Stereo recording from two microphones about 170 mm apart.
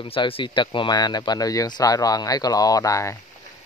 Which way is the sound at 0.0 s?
30° left (ahead or behind).